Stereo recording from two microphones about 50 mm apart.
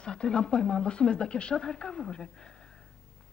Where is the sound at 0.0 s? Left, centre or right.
Centre.